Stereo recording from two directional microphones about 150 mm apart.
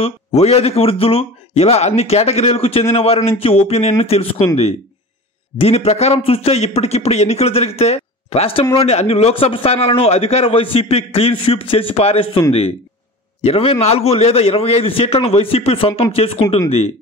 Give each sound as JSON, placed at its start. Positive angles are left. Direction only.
{"t": 0.0, "sound": "a man's voice", "side_deg": 45}
{"t": 5.6, "sound": "a man's voice", "side_deg": 45}
{"t": 13.4, "sound": "a man's voice", "side_deg": 40}